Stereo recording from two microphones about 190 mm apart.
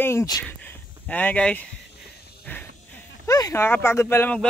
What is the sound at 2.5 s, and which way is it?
Speech, 10° left (ahead or behind).